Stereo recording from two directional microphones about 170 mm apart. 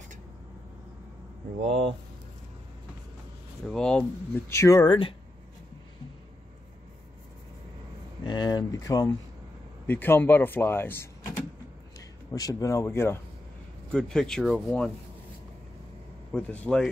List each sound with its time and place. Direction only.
1.7 s speech: 35° right (ahead or behind)
3.6 s speech: 5° left (ahead or behind); by 5.1 s 30° left (ahead or behind)
8.2 s speech: 25° left (ahead or behind)
12.3 s speech: 20° left (ahead or behind)
13.9 s speech: 5° left (ahead or behind)
16.3 s speech: 5° left (ahead or behind)